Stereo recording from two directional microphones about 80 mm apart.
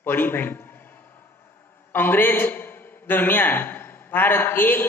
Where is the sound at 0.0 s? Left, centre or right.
Left.